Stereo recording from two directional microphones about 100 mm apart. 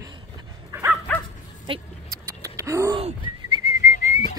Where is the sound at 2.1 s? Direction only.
30° right (ahead or behind).